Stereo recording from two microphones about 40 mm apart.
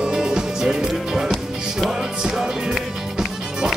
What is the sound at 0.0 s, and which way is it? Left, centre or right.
Music, centre.